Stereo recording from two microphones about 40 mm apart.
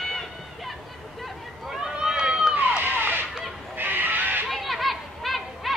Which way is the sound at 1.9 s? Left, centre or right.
Right.